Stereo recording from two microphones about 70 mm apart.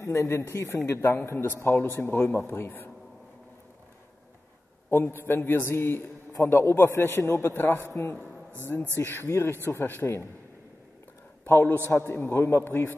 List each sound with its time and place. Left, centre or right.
0.0 s a man's voice: left
4.8 s a man's voice: left
11.4 s a man's voice: left